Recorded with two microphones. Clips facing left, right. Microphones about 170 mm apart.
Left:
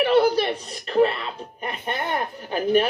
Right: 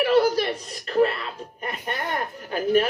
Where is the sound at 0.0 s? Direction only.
20° left (ahead or behind).